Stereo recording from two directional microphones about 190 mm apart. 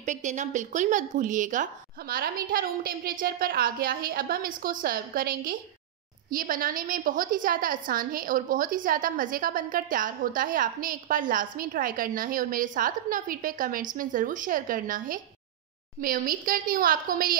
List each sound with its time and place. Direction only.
0.0 s a woman's voice: 40° right (ahead or behind)